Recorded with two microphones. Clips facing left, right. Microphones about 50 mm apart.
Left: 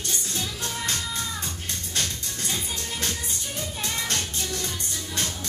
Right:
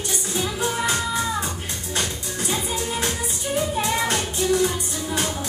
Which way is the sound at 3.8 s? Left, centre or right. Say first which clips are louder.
Right 7 dB; centre.